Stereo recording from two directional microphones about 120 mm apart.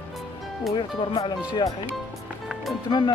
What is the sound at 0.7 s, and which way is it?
Speech, 40° left (ahead or behind).